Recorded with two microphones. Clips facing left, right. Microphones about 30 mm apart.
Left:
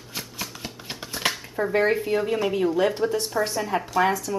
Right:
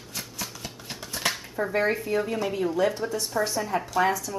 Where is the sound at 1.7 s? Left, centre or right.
Centre.